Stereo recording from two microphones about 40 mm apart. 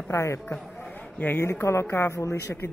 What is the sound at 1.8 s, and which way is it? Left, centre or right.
Speech, left.